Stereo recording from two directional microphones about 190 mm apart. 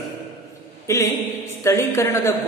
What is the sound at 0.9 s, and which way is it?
A man's voice, 15° left (ahead or behind).